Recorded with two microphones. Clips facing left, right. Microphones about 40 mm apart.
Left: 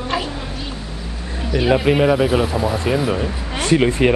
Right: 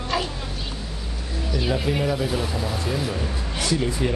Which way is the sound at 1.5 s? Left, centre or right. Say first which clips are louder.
Left 9 dB; left.